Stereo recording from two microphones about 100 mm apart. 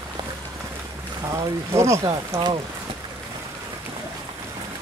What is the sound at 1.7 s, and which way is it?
Speech, 30° right (ahead or behind).